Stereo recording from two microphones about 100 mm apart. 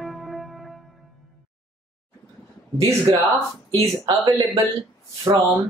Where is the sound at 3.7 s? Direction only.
30° right (ahead or behind).